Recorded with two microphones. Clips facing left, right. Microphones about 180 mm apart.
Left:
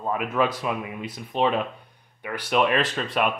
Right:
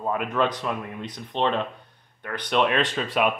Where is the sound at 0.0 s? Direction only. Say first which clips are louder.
Even; centre (ahead or behind).